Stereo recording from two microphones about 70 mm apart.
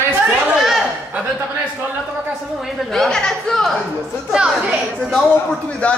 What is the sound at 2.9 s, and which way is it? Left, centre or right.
Speech, centre.